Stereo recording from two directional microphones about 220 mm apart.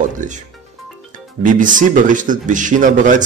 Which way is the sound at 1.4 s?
35° right (ahead or behind).